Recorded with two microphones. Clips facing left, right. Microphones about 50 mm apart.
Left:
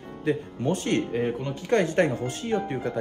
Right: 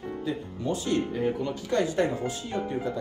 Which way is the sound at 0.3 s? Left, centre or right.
Left.